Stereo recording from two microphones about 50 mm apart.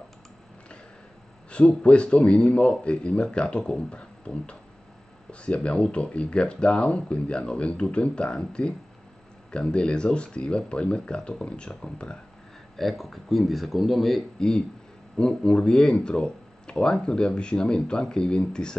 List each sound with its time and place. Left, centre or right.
1.5 s speech: left
12.7 s speech: centre
15.1 s speech: centre